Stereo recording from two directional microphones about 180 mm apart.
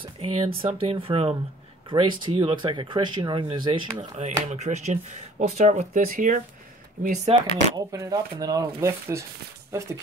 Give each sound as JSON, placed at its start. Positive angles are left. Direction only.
{"t": 0.0, "sound": "speech", "side_deg": -35}
{"t": 4.0, "sound": "speech", "side_deg": -40}
{"t": 7.3, "sound": "speech", "side_deg": -35}
{"t": 7.7, "sound": "speech", "side_deg": -20}